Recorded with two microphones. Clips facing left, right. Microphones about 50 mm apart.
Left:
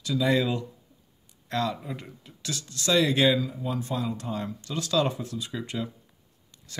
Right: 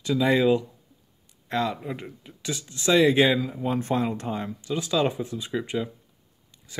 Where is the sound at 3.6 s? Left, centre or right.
Right.